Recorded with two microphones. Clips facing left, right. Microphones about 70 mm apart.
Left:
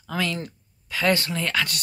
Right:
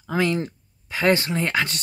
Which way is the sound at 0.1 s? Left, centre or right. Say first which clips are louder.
Right 5 dB; right.